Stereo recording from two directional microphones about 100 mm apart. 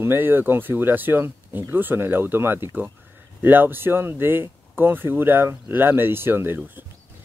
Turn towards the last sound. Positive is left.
turn(degrees=-20)  # may be behind; listen again after turning